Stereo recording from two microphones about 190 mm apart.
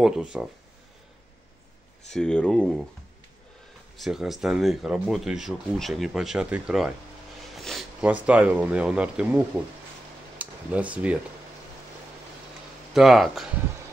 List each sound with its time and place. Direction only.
0.0 s speech: 5° right (ahead or behind)
2.1 s speech: 5° left (ahead or behind)
3.9 s speech: centre (ahead or behind)
7.5 s a sound: centre (ahead or behind)
8.0 s speech: 10° right (ahead or behind)
10.4 s speech: 5° right (ahead or behind)
12.9 s speech: centre (ahead or behind)